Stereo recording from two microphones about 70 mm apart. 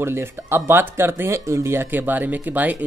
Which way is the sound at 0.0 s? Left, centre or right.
Right.